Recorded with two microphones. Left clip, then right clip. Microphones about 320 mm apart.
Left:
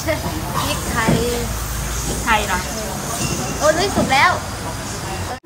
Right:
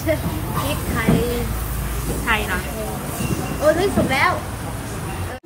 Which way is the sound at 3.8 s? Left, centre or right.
Centre.